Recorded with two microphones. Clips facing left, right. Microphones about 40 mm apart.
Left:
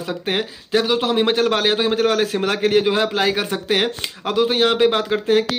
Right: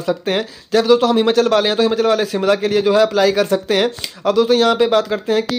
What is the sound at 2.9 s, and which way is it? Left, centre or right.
Speech, left.